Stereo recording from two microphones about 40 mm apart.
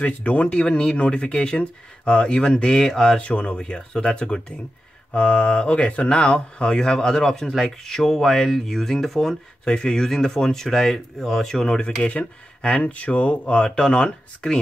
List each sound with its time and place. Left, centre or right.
0.0 s speech: left
0.6 s speech: left
3.2 s speech: left
3.5 s speech: left; by 9.4 s centre
9.7 s speech: left; by 11.5 s centre
11.5 s speech: centre
12.0 s speech: left